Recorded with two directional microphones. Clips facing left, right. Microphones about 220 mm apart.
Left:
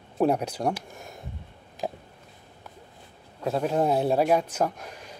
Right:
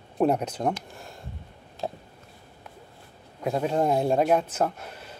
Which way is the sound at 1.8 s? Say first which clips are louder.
Left 1 dB; 10° left (ahead or behind).